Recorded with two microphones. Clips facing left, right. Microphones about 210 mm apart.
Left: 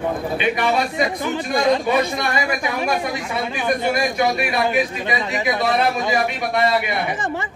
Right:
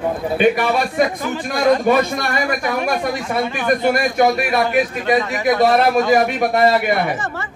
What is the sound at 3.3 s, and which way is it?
A man's voice, 50° right (ahead or behind).